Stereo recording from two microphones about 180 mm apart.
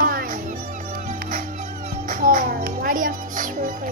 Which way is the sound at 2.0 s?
45° right (ahead or behind).